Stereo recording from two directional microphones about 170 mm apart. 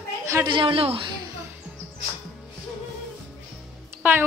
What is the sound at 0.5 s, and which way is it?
Speech, 30° right (ahead or behind).